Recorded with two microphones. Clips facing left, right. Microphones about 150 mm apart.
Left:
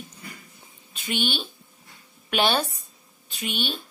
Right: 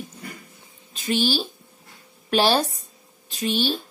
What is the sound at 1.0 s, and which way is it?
A woman's voice, 35° right (ahead or behind).